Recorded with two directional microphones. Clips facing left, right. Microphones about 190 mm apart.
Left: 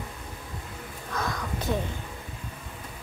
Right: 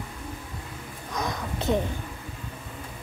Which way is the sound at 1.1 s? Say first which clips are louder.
Right 1 dB; 20° right (ahead or behind).